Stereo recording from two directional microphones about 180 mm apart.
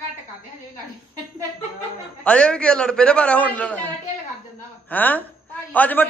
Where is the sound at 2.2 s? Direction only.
5° left (ahead or behind).